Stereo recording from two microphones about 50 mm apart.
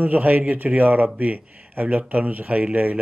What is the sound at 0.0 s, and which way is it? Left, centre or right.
A man's voice, right.